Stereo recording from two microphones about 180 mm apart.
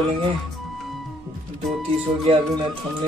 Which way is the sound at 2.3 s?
35° right (ahead or behind).